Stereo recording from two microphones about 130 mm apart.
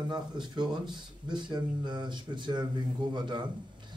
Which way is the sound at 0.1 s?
35° right (ahead or behind).